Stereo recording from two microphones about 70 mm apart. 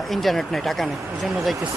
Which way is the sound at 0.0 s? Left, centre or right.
Centre.